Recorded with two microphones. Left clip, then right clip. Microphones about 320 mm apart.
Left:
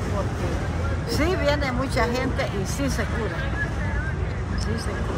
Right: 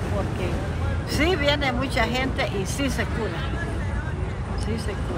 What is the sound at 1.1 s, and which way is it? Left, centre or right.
Speech, centre.